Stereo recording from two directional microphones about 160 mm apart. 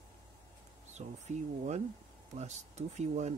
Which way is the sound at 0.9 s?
45° right (ahead or behind).